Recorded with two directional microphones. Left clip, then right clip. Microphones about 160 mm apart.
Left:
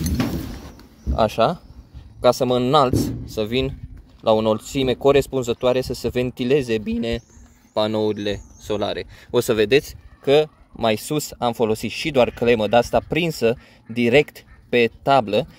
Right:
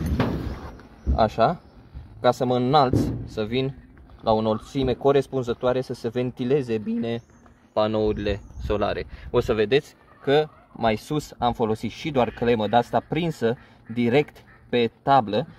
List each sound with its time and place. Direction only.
1.1 s speech: 20° left (ahead or behind)
9.3 s speech: 40° left (ahead or behind); by 15.4 s 25° left (ahead or behind)